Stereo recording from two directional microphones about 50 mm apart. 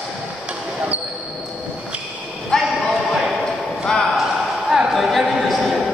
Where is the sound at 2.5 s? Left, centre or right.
Centre.